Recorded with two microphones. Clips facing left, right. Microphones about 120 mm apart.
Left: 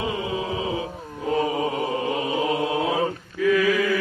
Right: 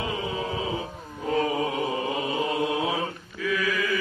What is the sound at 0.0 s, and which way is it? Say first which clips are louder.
Music: left 3 dB; 15° left (ahead or behind).